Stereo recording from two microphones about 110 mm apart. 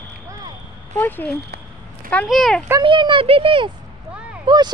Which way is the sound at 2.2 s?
5° left (ahead or behind).